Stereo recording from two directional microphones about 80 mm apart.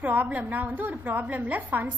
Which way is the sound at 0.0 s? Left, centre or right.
Right.